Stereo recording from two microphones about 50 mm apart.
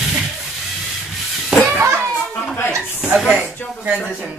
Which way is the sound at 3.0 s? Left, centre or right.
Centre.